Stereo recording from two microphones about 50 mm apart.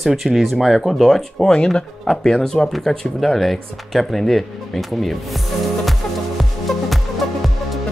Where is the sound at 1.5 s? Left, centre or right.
Centre.